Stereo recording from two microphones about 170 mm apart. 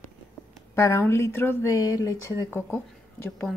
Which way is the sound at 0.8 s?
15° left (ahead or behind).